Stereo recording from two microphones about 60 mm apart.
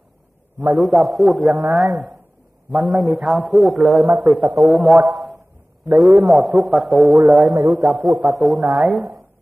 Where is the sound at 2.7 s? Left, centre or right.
Centre.